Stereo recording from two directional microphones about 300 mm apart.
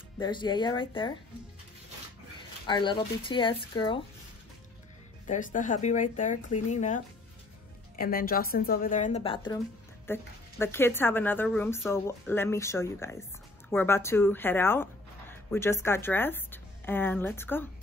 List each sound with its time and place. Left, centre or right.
0.2 s speech: centre
2.6 s speech: centre
5.2 s speech: left; by 17.6 s centre